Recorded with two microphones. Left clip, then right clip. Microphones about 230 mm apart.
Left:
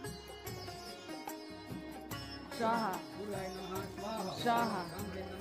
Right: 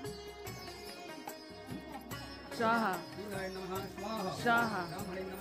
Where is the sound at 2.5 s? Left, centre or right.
Centre.